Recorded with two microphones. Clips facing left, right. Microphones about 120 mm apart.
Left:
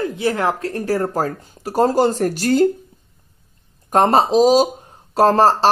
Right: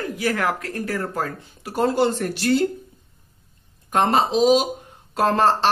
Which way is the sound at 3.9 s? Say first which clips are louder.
Left 5 dB; 40° left (ahead or behind).